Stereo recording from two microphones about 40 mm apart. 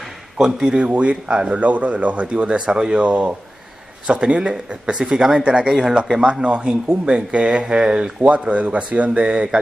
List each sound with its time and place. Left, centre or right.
0.4 s speech: centre
0.9 s speech: right
3.0 s speech: right; by 5.4 s centre
5.4 s speech: right
5.7 s speech: centre
8.2 s speech: right